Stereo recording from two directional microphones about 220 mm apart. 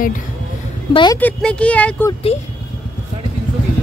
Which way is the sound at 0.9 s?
20° left (ahead or behind).